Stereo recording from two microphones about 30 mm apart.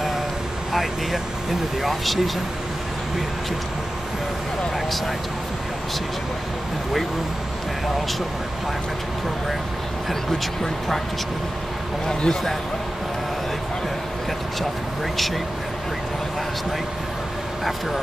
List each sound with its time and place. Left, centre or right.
0.7 s speech: centre
12.1 s speech: left